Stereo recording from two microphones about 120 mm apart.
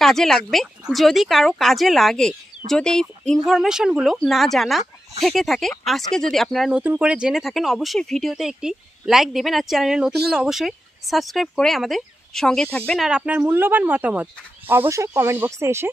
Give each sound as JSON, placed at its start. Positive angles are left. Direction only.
{"t": 0.0, "sound": "speech", "side_deg": 0}
{"t": 6.8, "sound": "speech", "side_deg": -10}
{"t": 13.0, "sound": "speech", "side_deg": -10}